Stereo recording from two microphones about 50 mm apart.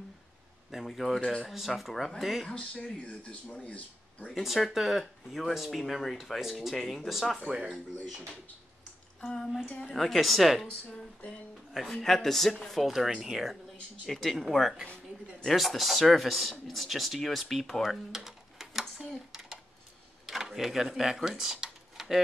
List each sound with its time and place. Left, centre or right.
0.7 s speech: centre
2.5 s speech: centre
4.3 s speech: centre
9.8 s speech: centre
10.9 s speech: centre
11.7 s speech: centre
17.8 s a sound: centre